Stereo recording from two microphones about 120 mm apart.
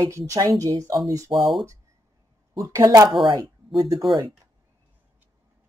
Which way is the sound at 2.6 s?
25° right (ahead or behind).